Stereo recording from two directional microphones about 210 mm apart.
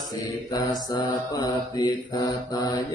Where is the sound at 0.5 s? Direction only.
20° left (ahead or behind).